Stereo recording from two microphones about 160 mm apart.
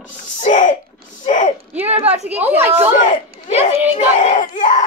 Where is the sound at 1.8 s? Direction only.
40° right (ahead or behind).